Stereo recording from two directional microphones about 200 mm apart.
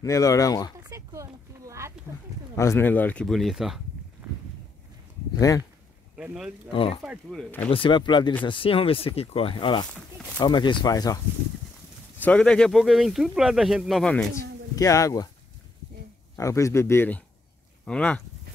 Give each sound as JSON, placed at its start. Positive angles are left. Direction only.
{"t": 0.0, "sound": "speech", "side_deg": 15}
{"t": 0.8, "sound": "a sound", "side_deg": -15}
{"t": 2.5, "sound": "speech", "side_deg": 15}
{"t": 6.1, "sound": "speech", "side_deg": -5}
{"t": 6.7, "sound": "speech", "side_deg": 25}
{"t": 7.0, "sound": "speech", "side_deg": 0}
{"t": 7.7, "sound": "speech", "side_deg": 25}
{"t": 12.2, "sound": "speech", "side_deg": 5}
{"t": 14.3, "sound": "speech", "side_deg": 15}
{"t": 16.3, "sound": "speech", "side_deg": 15}